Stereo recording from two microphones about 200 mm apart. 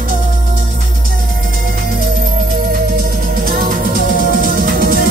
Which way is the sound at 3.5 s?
45° right (ahead or behind).